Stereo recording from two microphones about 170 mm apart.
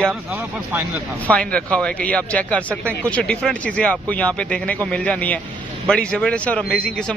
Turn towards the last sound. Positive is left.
turn(degrees=5)  # may be behind; listen again after turning